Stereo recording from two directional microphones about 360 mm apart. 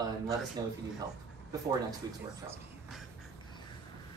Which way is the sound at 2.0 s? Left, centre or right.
Centre.